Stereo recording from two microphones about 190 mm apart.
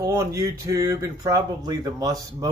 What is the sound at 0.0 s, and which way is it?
Speech, 15° right (ahead or behind).